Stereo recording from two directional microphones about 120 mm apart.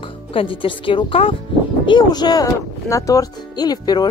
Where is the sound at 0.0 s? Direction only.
50° left (ahead or behind).